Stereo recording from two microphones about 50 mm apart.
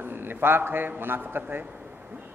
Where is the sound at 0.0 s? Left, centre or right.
Right.